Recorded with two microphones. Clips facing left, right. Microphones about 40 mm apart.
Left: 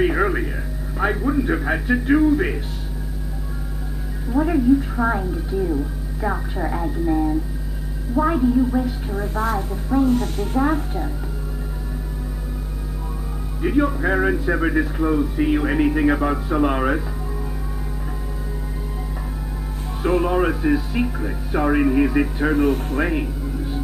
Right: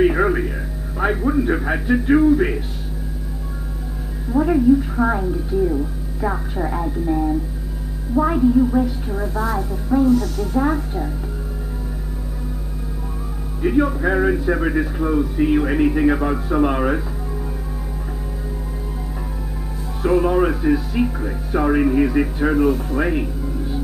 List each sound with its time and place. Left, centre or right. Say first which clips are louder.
0.0 s a sound: right 3 dB; centre
1.2 s speech: right 2 dB; centre
4.3 s speech: right 2 dB; centre
9.3 s speech: left 1 dB; left
9.7 s speech: right 2 dB; centre
10.0 s speech: right 3 dB; left
10.6 s speech: even; centre
13.6 s speech: right 2 dB; centre
20.0 s speech: right 2 dB; centre
22.7 s speech: right 1 dB; left
22.9 s speech: right 1 dB; centre